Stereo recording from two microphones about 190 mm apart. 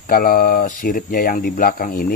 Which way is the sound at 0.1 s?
50° left (ahead or behind).